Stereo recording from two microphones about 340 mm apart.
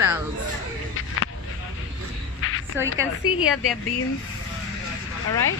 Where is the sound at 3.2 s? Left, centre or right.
Left.